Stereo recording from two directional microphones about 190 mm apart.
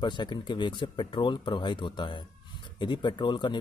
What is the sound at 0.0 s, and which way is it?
Speech, 25° left (ahead or behind).